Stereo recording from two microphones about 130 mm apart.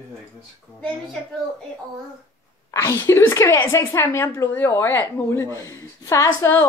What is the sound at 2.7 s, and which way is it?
A woman's voice, 20° left (ahead or behind).